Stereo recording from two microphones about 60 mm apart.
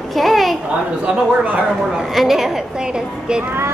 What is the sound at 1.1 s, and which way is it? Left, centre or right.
Speech, right.